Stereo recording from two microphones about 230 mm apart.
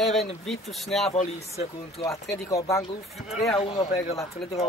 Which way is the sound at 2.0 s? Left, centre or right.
Centre.